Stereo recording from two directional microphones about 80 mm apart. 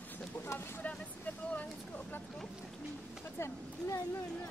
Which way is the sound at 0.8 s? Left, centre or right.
Centre.